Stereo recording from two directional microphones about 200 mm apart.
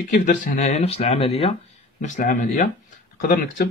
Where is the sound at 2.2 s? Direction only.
40° left (ahead or behind).